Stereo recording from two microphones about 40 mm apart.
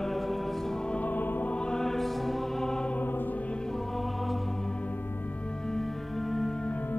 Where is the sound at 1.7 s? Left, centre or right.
Centre.